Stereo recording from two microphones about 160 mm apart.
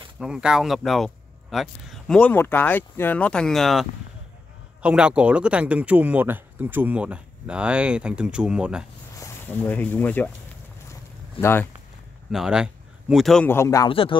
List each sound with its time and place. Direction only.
0.2 s speech: 5° right (ahead or behind)
4.8 s speech: 5° right (ahead or behind)
9.2 s speech: 10° left (ahead or behind)
11.4 s speech: 35° left (ahead or behind)
12.3 s speech: 5° right (ahead or behind)
13.5 s speech: 20° left (ahead or behind)
13.8 s speech: 35° left (ahead or behind)